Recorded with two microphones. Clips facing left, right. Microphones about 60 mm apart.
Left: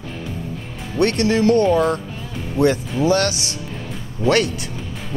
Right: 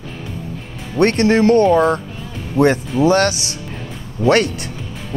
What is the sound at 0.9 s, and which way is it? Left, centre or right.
Speech, right.